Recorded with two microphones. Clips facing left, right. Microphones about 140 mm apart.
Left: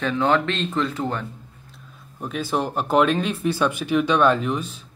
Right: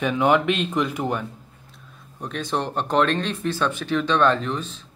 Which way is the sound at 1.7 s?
5° left (ahead or behind).